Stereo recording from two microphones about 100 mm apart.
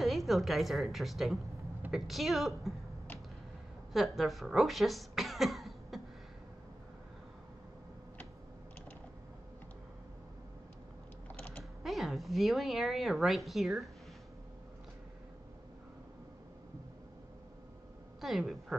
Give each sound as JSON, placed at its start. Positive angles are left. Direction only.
{"t": 0.0, "sound": "a woman's voice", "side_deg": 0}
{"t": 3.9, "sound": "speech", "side_deg": 0}
{"t": 11.2, "sound": "mechanisms", "side_deg": 15}
{"t": 11.8, "sound": "a woman's voice", "side_deg": 0}
{"t": 18.2, "sound": "speech", "side_deg": 0}